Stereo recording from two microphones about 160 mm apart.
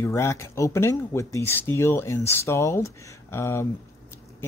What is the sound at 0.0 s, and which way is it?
Speech, 15° left (ahead or behind).